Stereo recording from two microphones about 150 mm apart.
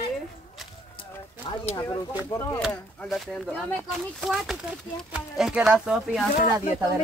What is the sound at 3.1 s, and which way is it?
Speech, centre (ahead or behind).